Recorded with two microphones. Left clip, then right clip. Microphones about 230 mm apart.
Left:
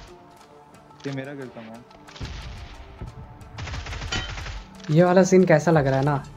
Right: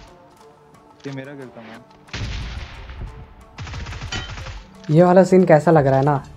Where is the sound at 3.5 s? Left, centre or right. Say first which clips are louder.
Right 1 dB; centre.